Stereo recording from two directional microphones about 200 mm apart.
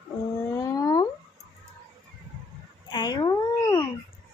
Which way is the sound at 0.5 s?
15° left (ahead or behind).